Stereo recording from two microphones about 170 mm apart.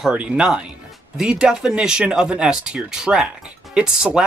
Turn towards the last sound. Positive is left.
turn(degrees=-5)  # may be behind; listen again after turning